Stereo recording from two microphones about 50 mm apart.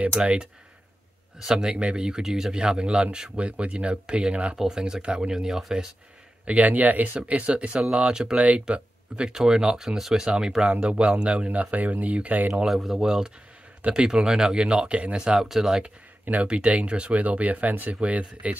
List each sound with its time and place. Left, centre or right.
0.2 s speech: centre
6.4 s speech: right
11.7 s speech: right
12.6 s speech: centre
15.8 s speech: right